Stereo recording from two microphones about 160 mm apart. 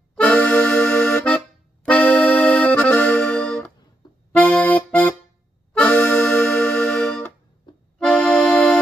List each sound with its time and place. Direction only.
0.1 s accordion: 5° left (ahead or behind)
4.0 s accordion: 25° left (ahead or behind)
4.4 s accordion: 10° left (ahead or behind)
5.8 s music: 10° left (ahead or behind)
8.0 s accordion: 5° left (ahead or behind)